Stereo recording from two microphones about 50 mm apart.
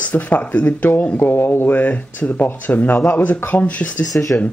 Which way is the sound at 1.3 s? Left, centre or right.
Left.